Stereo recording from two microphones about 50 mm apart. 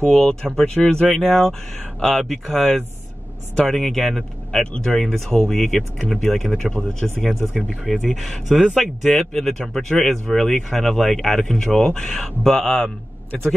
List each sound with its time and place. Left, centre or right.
0.0 s speech: centre
4.5 s speech: centre